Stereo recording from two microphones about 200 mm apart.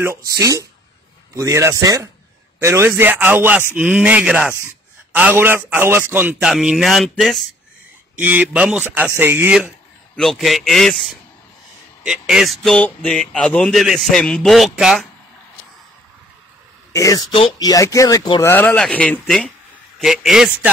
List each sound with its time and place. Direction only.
0.4 s a man's voice: 15° right (ahead or behind)
10.1 s speech: centre (ahead or behind)
16.9 s speech: 15° left (ahead or behind); by 20.7 s centre (ahead or behind)